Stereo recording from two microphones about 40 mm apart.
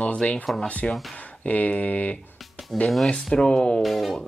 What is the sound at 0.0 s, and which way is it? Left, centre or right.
Speech, left.